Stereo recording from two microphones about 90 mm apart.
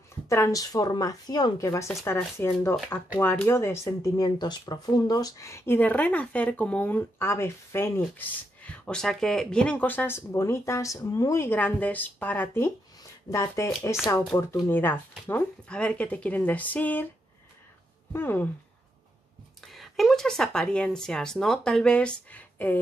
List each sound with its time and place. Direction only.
0.3 s a woman's voice: 40° left (ahead or behind)
2.3 s speech: 30° left (ahead or behind); by 5.3 s 50° left (ahead or behind)
5.4 s speech: 30° left (ahead or behind)
5.8 s speech: 15° left (ahead or behind)
8.6 s speech: 10° left (ahead or behind); by 14.0 s 35° left (ahead or behind)
14.5 s speech: 25° left (ahead or behind)
15.7 s speech: 10° left (ahead or behind)
18.1 s speech: 25° left (ahead or behind)
19.6 s speech: centre (ahead or behind); by 22.8 s 20° left (ahead or behind)